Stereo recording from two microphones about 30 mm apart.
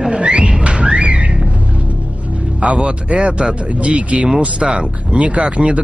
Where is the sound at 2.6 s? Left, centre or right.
Right.